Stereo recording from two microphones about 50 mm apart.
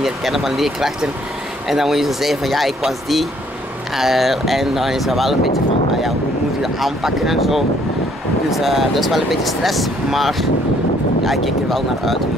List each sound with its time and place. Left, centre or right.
0.0 s speech: centre
6.6 s speech: centre